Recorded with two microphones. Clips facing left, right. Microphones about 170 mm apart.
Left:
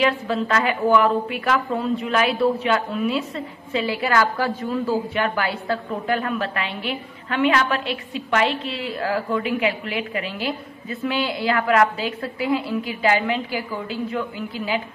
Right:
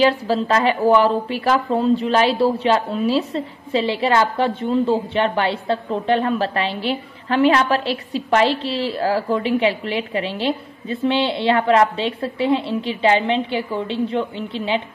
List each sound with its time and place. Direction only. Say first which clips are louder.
0.0 s a woman's voice: right 4 dB; 30° right (ahead or behind)